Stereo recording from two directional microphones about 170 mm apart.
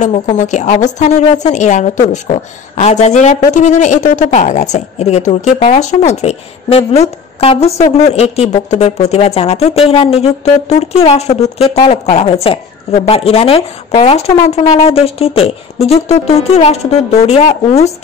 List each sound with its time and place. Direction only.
0.0 s a woman's voice: 40° left (ahead or behind)